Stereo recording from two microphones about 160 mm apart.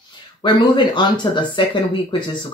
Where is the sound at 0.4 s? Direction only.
30° left (ahead or behind).